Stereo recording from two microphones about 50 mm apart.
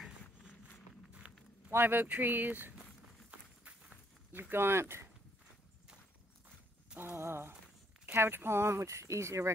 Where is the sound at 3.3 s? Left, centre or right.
Right.